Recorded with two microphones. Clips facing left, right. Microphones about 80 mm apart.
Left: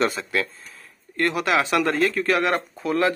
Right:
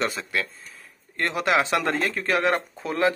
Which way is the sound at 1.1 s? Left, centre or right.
Right.